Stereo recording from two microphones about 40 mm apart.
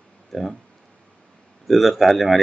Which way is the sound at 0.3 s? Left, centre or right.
Centre.